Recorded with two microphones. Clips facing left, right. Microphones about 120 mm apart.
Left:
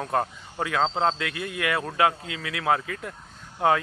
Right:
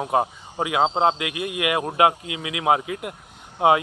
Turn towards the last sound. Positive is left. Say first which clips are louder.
# right 4 dB
turn(degrees=-15)  # may be behind; listen again after turning